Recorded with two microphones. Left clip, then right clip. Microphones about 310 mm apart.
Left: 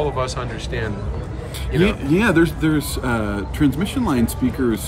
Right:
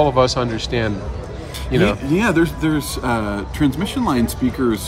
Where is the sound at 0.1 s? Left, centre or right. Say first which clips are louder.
Right 8 dB; centre.